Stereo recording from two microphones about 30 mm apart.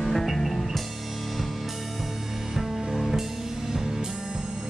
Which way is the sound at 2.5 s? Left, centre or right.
Centre.